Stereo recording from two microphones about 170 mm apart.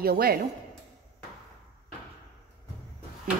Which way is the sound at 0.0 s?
60° right (ahead or behind).